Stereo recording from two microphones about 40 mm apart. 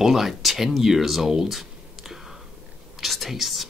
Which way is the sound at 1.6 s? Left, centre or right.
Centre.